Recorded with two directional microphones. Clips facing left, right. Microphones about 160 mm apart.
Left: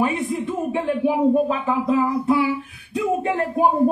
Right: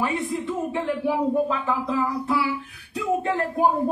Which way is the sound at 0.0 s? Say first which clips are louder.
Left 4 dB; 20° left (ahead or behind).